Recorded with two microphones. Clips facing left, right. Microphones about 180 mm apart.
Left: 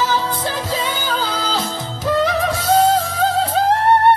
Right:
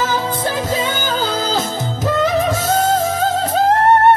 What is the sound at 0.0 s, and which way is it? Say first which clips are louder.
Music: right 1 dB; 45° right (ahead or behind).